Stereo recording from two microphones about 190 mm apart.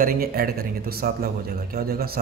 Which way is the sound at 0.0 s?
50° right (ahead or behind).